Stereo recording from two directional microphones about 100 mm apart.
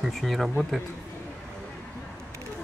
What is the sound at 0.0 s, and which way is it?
Speech, centre (ahead or behind).